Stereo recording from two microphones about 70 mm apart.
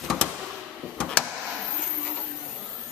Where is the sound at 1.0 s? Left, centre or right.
Centre.